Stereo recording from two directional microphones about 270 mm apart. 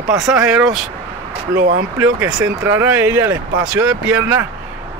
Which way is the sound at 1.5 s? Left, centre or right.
Right.